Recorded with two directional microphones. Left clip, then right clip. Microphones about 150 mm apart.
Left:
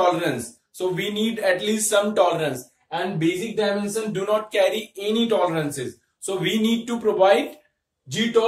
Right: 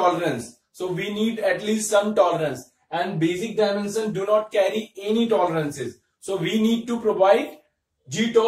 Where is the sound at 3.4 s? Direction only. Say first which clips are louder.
Right 1 dB; 10° left (ahead or behind).